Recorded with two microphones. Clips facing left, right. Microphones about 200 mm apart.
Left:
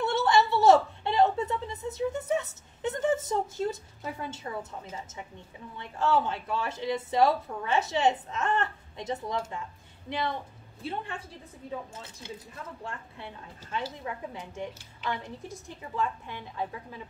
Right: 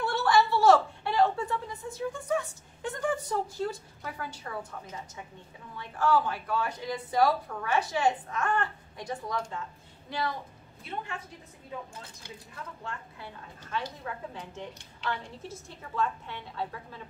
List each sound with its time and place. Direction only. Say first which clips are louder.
0.0 s a sound: left 1 dB; 20° left (ahead or behind)
5.8 s a woman's voice: even; 25° left (ahead or behind)
13.8 s a woman's voice: left 2 dB; 10° left (ahead or behind)